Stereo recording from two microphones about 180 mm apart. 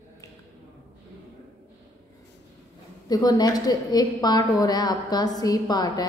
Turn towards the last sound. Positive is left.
turn(degrees=20)  # may be behind; listen again after turning